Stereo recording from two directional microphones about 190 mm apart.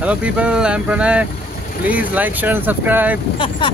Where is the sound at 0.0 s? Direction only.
5° right (ahead or behind).